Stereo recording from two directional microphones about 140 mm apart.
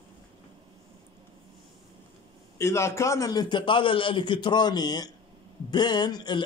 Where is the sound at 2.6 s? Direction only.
20° left (ahead or behind).